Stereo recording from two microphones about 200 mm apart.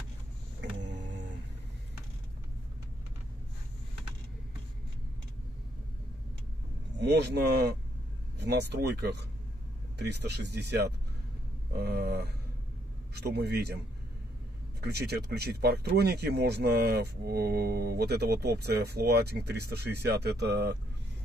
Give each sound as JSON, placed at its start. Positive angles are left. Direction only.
{"t": 0.7, "sound": "a sound", "side_deg": -60}
{"t": 7.0, "sound": "speech", "side_deg": -55}
{"t": 14.8, "sound": "speech", "side_deg": -55}